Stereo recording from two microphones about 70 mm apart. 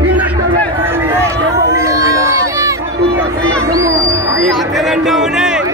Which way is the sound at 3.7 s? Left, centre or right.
Right.